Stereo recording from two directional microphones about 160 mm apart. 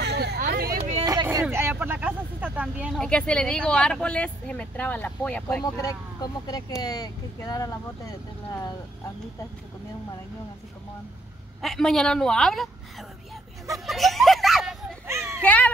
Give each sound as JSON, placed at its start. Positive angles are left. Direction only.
{"t": 0.0, "sound": "hubbub", "side_deg": -90}
{"t": 0.5, "sound": "hubbub", "side_deg": -75}
{"t": 1.0, "sound": "a sound", "side_deg": -20}
{"t": 1.4, "sound": "speech", "side_deg": -15}
{"t": 3.0, "sound": "speech", "side_deg": 5}
{"t": 5.8, "sound": "speech", "side_deg": 25}
{"t": 11.6, "sound": "a woman's voice", "side_deg": 0}
{"t": 13.8, "sound": "speech", "side_deg": 0}
{"t": 15.0, "sound": "speech", "side_deg": -15}
{"t": 15.4, "sound": "a sound", "side_deg": 10}